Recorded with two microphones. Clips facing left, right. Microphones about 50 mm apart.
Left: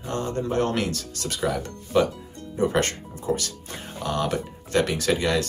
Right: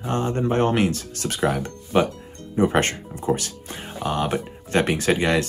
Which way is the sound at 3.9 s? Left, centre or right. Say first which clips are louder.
Right 2 dB; right.